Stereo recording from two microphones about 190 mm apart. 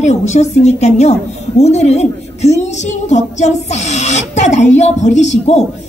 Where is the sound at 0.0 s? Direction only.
35° left (ahead or behind).